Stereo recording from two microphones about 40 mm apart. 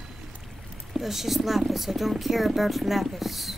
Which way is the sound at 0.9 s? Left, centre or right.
Centre.